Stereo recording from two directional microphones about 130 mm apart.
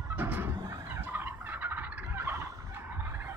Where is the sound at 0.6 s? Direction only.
30° right (ahead or behind).